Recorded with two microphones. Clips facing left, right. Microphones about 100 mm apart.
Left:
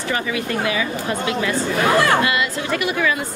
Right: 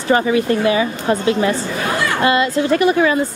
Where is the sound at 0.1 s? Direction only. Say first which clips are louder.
Right 9 dB; 35° right (ahead or behind).